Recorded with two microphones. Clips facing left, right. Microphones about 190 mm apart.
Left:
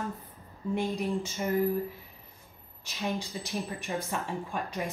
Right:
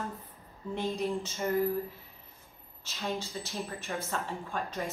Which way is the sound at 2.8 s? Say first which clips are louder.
Left 2 dB; 15° left (ahead or behind).